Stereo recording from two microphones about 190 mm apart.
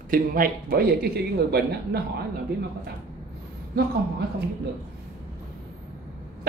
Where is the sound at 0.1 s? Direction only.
50° right (ahead or behind).